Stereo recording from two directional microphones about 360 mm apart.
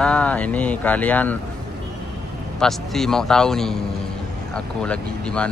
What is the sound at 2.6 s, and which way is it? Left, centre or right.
Speech, centre.